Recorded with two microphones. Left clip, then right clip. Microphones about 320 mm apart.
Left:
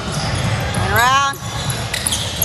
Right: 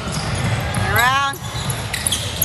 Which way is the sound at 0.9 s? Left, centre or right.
Centre.